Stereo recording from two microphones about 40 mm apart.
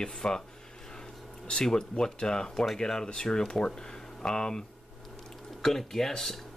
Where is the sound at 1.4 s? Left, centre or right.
Centre.